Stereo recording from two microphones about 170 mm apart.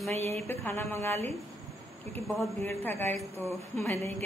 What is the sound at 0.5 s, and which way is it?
Speech, 15° left (ahead or behind).